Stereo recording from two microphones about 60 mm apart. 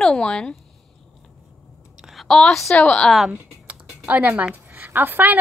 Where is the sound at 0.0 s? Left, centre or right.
Centre.